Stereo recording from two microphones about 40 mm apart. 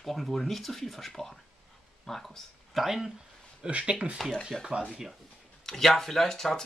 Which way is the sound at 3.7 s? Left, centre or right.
Right.